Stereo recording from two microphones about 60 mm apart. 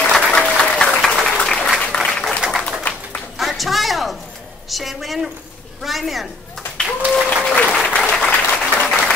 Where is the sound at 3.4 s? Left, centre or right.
Centre.